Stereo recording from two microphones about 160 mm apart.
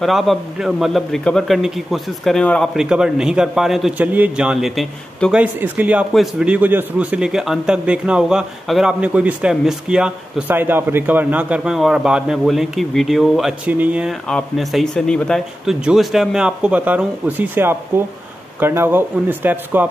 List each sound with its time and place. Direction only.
0.0 s a man's voice: centre (ahead or behind)